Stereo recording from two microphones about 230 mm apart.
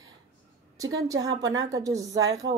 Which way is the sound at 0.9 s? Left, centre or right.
Centre.